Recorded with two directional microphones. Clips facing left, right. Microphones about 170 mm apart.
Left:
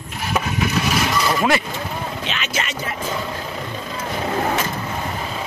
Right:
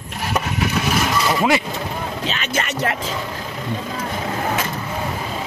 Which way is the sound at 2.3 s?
50° right (ahead or behind).